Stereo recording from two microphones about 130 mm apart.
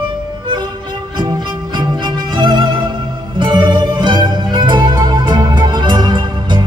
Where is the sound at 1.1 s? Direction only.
35° right (ahead or behind).